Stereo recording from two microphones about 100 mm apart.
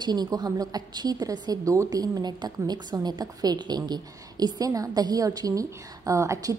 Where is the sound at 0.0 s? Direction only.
45° right (ahead or behind).